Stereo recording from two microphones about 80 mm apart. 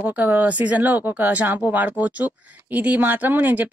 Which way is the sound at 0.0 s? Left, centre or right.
Right.